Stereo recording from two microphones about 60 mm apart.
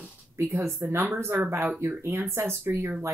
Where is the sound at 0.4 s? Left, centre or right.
Right.